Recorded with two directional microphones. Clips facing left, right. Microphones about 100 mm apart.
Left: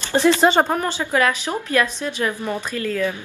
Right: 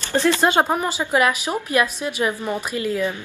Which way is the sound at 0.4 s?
5° right (ahead or behind).